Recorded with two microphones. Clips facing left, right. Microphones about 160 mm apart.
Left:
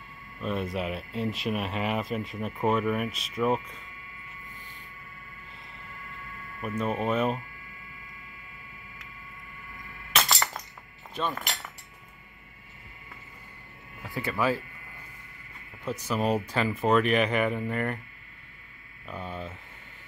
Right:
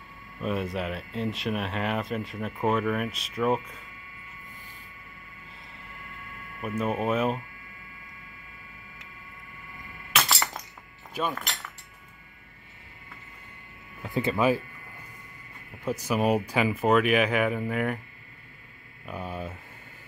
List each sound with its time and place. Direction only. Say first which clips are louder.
0.4 s speech: right 1 dB; centre (ahead or behind)
6.6 s speech: right 1 dB; 5° right (ahead or behind)
10.1 s a sound: even; centre (ahead or behind)
11.1 s speech: right 1 dB; centre (ahead or behind)
14.0 s speech: right 4 dB; 20° right (ahead or behind)
16.1 s speech: right 2 dB; 10° right (ahead or behind)
19.0 s speech: right 2 dB; 10° right (ahead or behind)